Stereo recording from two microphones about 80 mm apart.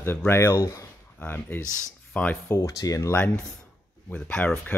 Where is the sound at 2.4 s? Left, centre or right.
Left.